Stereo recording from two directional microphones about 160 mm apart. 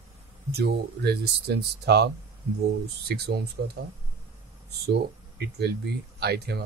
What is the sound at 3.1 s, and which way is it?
Speech, 80° right.